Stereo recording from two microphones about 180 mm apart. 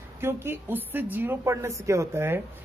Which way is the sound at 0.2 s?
15° right (ahead or behind).